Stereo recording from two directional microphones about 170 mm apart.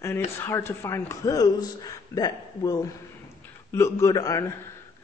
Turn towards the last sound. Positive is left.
turn(degrees=20)  # may be behind; listen again after turning